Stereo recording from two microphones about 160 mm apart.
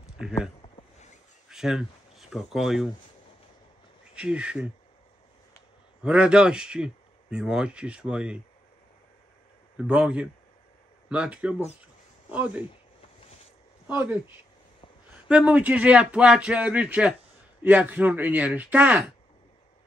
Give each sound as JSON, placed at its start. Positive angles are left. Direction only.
{"t": 0.7, "sound": "a sound", "side_deg": 45}
{"t": 1.5, "sound": "speech", "side_deg": -5}
{"t": 4.1, "sound": "speech", "side_deg": -5}
{"t": 6.0, "sound": "speech", "side_deg": -5}
{"t": 9.8, "sound": "speech", "side_deg": -5}
{"t": 13.8, "sound": "speech", "side_deg": -10}